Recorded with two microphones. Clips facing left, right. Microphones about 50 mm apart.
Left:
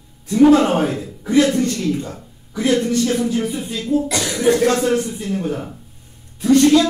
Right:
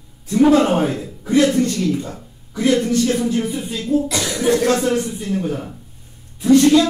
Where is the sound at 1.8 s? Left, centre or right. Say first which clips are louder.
Right 1 dB; centre.